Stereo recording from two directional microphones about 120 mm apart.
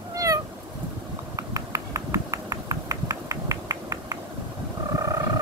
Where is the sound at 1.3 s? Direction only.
25° right (ahead or behind).